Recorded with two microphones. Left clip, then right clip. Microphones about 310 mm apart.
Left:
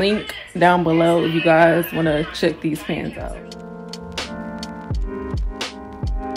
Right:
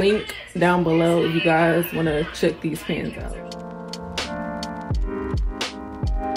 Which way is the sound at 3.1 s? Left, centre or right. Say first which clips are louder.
Left 2 dB; centre.